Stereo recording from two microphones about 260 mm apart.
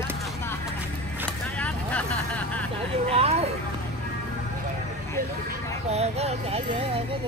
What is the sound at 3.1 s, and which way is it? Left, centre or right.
Vehicle, right.